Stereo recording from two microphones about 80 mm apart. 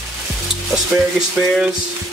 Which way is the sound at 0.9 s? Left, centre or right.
Right.